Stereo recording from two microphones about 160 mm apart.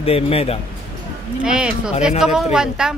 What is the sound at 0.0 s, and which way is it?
Speech, 40° left (ahead or behind).